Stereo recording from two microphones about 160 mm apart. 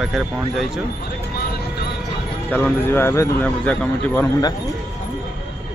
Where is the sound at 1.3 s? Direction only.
80° left.